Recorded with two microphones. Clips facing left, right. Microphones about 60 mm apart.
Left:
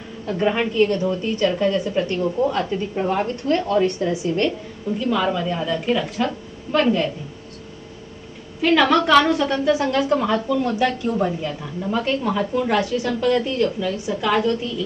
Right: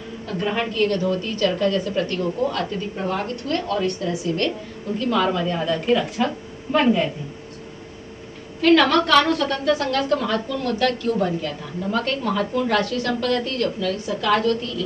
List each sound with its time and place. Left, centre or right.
0.3 s a woman's voice: centre
4.9 s a woman's voice: centre
8.5 s a woman's voice: centre